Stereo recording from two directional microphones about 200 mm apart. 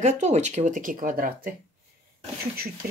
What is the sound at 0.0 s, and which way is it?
Speech, 35° right (ahead or behind).